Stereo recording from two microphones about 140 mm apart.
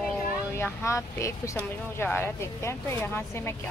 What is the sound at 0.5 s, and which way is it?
Speech, 20° left (ahead or behind).